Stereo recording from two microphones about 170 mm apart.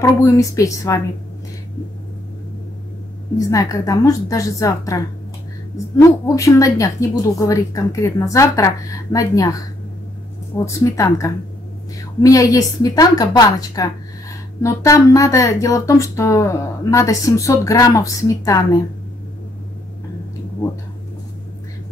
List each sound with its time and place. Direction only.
0.0 s speech: 20° left (ahead or behind)
3.3 s speech: 20° left (ahead or behind)
5.9 s speech: 20° left (ahead or behind)
10.6 s speech: 15° left (ahead or behind)